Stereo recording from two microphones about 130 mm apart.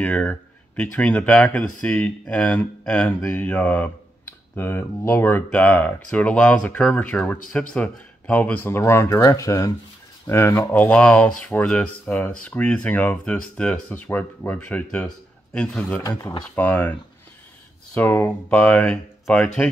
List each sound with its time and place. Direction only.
0.0 s speech: 10° left (ahead or behind)
16.0 s speech: 30° left (ahead or behind)
16.5 s speech: 15° left (ahead or behind)
17.9 s speech: 15° left (ahead or behind)